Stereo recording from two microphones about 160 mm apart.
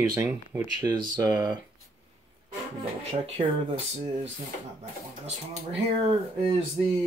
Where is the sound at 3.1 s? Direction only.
35° right (ahead or behind).